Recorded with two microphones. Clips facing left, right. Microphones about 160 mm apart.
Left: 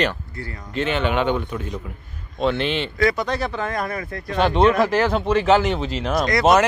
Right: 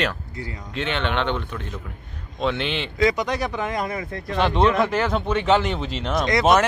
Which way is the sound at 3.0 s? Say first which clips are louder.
Right 1 dB; 15° right (ahead or behind).